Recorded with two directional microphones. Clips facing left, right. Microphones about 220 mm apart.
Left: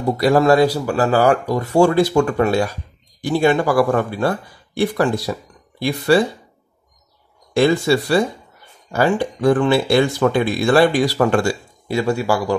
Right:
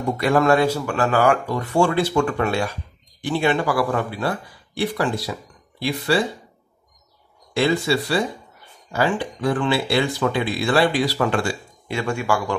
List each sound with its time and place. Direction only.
0.0 s speech: 35° left (ahead or behind)
7.5 s speech: 50° left (ahead or behind)